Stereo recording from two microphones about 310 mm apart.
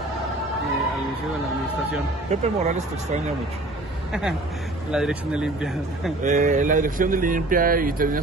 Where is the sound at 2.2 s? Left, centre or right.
Right.